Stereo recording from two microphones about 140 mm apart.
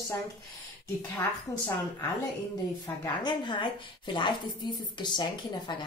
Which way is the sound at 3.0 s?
30° left (ahead or behind).